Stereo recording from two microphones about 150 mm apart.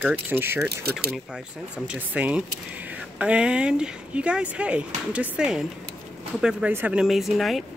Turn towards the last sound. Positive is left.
turn(degrees=0)  # may be behind; listen again after turning